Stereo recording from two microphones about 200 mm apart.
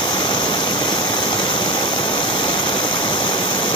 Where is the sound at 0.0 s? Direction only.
20° left (ahead or behind).